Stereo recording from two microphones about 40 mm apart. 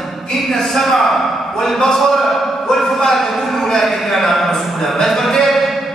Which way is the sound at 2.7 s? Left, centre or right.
Centre.